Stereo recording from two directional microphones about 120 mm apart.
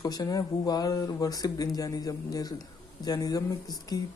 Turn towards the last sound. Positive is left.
turn(degrees=30)  # may be behind; listen again after turning